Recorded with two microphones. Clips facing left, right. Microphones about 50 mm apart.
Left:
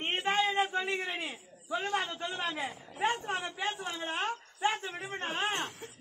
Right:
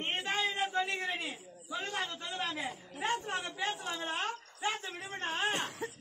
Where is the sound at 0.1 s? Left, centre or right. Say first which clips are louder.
Left 5 dB; centre.